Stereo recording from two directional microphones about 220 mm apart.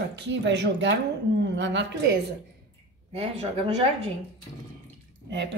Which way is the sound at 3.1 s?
30° right (ahead or behind).